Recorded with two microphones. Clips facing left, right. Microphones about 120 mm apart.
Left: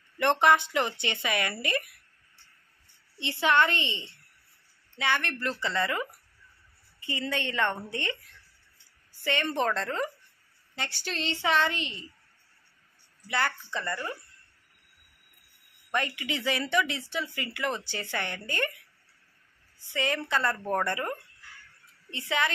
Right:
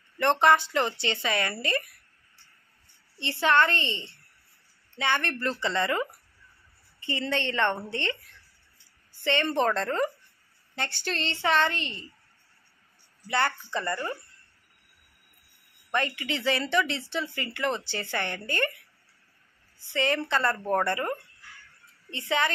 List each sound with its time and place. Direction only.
0.2 s speech: 15° left (ahead or behind)
3.2 s speech: 15° left (ahead or behind)
4.9 s speech: 5° left (ahead or behind)
7.1 s speech: 10° left (ahead or behind)
9.2 s speech: 10° left (ahead or behind)
13.3 s speech: centre (ahead or behind)
15.9 s speech: 10° left (ahead or behind)
19.9 s speech: 10° left (ahead or behind)
22.1 s speech: 5° left (ahead or behind)